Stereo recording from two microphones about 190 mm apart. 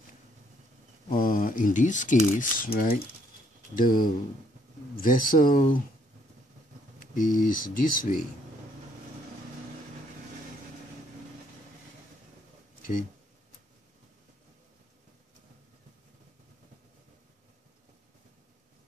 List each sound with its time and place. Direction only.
1.1 s speech: 45° left (ahead or behind)
7.0 s speech: 45° left (ahead or behind)